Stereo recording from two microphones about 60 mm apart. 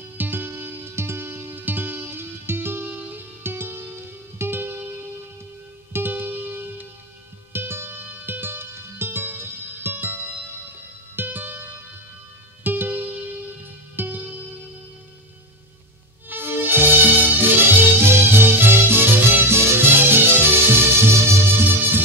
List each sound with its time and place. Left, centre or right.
0.0 s music: right
5.9 s music: right
16.3 s music: right
21.6 s music: right